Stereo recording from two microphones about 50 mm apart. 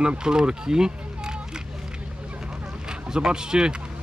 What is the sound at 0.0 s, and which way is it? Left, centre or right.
Speech, centre.